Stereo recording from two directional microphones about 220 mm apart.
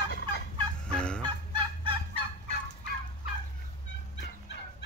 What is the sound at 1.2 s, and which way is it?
Fowl, 20° right (ahead or behind).